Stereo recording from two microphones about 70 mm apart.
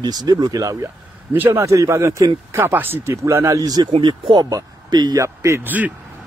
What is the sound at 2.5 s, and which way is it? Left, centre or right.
Speech, right.